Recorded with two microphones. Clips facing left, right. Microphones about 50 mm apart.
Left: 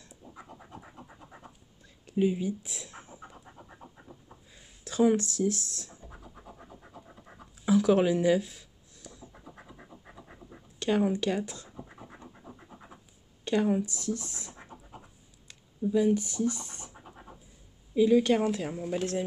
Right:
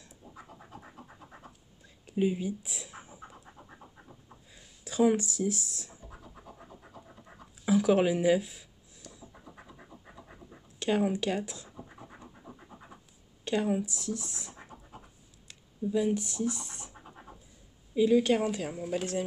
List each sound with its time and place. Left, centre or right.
0.1 s scratch: centre
2.0 s pant: centre
6.0 s scratch: centre
7.7 s a sound: centre
9.3 s scratch: centre
17.9 s a woman's voice: centre